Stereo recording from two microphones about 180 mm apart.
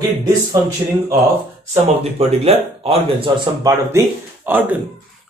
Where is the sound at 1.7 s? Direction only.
35° right (ahead or behind).